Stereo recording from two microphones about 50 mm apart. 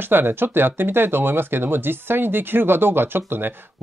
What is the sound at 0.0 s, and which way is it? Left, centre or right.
Speech, right.